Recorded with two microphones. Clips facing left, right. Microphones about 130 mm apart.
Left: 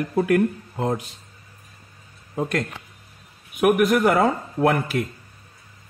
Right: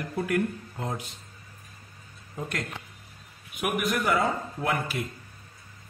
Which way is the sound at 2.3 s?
75° left (ahead or behind).